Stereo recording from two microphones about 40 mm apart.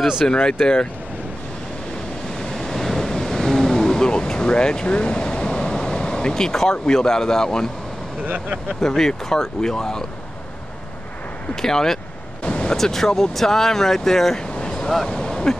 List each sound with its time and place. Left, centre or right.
0.3 s speech: left
2.4 s vehicle: centre
4.9 s speech: left
8.8 s speech: centre
11.6 s speech: centre
12.4 s waves: left
12.7 s speech: centre
14.7 s a sound: centre